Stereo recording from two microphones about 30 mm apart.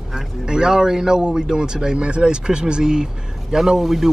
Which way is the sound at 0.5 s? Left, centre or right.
Right.